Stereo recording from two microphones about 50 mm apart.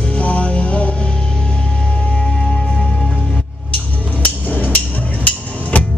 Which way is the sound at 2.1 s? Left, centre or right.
Left.